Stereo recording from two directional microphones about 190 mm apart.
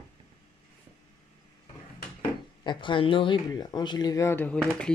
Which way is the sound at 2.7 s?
25° left (ahead or behind).